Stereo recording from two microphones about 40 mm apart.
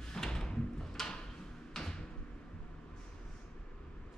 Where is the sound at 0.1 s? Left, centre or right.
Centre.